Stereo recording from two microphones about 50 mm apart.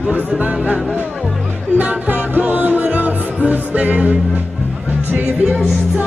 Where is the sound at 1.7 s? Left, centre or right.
Right.